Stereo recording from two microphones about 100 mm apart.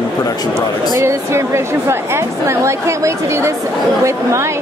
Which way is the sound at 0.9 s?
30° right (ahead or behind).